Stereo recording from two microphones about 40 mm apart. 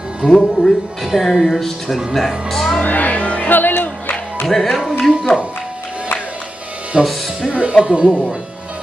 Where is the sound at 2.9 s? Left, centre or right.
Left.